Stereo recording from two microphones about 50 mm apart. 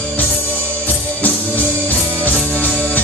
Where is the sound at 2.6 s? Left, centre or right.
Left.